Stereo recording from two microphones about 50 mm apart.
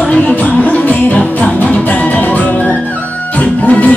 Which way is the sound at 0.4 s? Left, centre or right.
Left.